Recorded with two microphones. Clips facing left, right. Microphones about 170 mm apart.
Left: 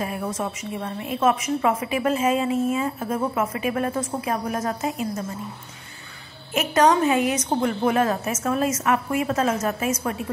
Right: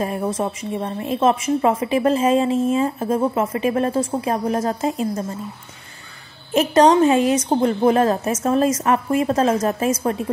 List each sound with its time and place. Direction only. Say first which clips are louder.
0.0 s a woman's voice: right 5 dB; 35° right (ahead or behind)
6.5 s a woman's voice: right 5 dB; 35° right (ahead or behind)